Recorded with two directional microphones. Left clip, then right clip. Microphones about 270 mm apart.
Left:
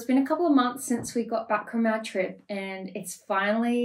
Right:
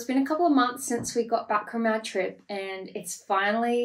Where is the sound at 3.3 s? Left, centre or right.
Centre.